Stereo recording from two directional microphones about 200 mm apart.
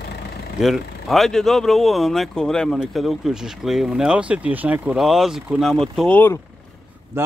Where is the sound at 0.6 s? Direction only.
Centre (ahead or behind).